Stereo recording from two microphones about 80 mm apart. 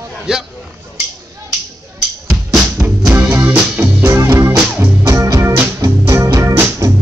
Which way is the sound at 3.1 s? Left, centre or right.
Right.